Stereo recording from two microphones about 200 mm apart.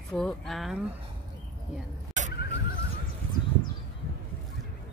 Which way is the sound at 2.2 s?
35° right (ahead or behind).